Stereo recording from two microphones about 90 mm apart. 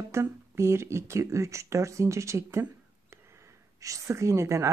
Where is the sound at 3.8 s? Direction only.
35° right (ahead or behind).